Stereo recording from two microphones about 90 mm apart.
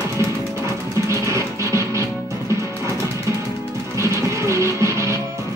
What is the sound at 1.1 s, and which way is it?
Music, 35° right (ahead or behind).